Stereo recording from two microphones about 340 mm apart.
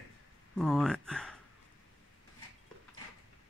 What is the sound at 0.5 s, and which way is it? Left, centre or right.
Speech, centre.